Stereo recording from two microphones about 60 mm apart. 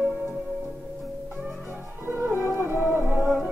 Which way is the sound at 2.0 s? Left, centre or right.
Right.